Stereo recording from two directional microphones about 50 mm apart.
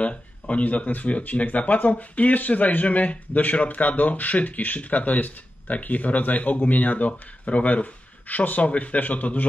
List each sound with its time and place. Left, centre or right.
0.0 s speech: left